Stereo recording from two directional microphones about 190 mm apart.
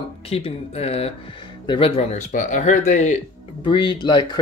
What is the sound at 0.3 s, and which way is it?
Speech, 30° left (ahead or behind).